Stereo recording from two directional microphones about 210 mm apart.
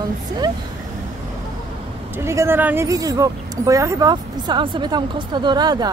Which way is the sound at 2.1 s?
15° right (ahead or behind).